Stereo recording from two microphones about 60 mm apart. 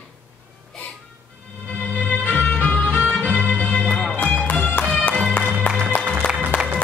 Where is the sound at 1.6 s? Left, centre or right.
Left.